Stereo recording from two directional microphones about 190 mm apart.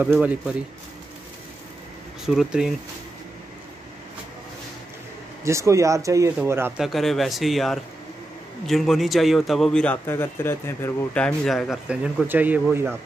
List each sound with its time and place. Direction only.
0.0 s speech: 10° right (ahead or behind)
2.2 s a man's voice: 5° right (ahead or behind)
5.4 s speech: 15° right (ahead or behind)
6.8 s a man's voice: centre (ahead or behind)